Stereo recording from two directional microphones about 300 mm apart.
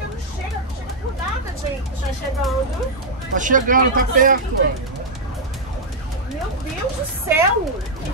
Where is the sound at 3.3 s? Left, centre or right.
Right.